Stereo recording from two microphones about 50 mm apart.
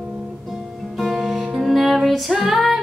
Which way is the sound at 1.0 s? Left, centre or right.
Centre.